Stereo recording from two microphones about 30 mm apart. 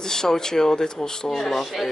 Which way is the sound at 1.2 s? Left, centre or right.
Centre.